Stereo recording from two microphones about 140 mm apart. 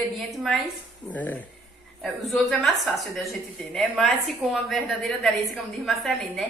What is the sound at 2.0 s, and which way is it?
A woman's voice, centre (ahead or behind).